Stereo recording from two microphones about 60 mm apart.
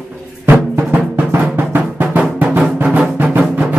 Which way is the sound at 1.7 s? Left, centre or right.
Right.